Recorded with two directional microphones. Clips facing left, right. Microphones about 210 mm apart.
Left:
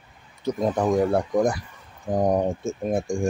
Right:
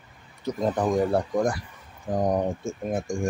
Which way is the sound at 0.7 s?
10° left (ahead or behind).